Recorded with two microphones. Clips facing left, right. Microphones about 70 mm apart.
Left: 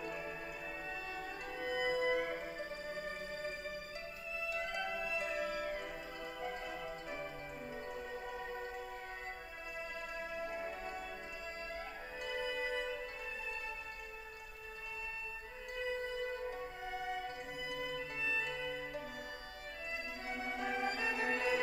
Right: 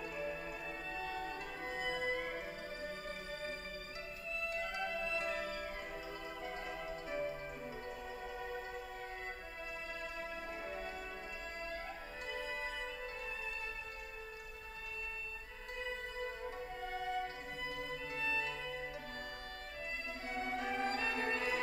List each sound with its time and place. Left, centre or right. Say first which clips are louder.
0.9 s music: right 2 dB; centre
4.9 s music: even; centre
6.4 s music: left 2 dB; centre
10.5 s music: left 2 dB; centre
16.8 s music: right 3 dB; centre
20.2 s music: right 1 dB; centre